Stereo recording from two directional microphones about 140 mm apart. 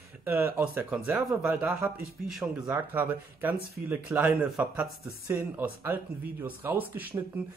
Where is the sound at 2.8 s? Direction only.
15° right (ahead or behind).